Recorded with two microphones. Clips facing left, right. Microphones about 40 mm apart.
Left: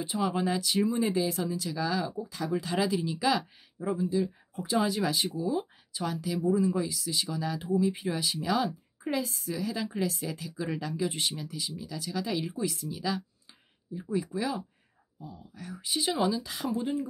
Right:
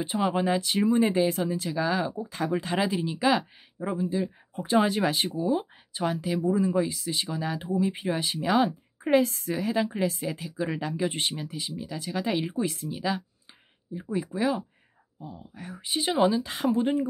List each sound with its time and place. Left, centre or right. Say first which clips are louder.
0.0 s speech: right 3 dB; right
9.2 s a woman's voice: right 9 dB; right
9.5 s speech: right 6 dB; right